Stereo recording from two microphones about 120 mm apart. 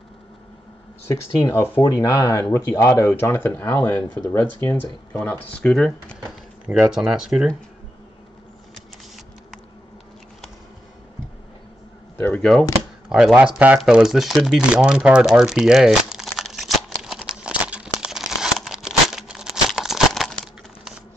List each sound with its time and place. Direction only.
1.0 s speech: 20° left (ahead or behind); by 6.1 s 5° left (ahead or behind)
6.6 s speech: 15° right (ahead or behind)
8.7 s a sound: centre (ahead or behind)
12.2 s speech: 15° left (ahead or behind)
13.1 s speech: 10° right (ahead or behind)
13.7 s a sound: 5° right (ahead or behind)